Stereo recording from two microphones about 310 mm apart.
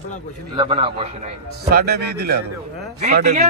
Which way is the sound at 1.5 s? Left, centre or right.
Right.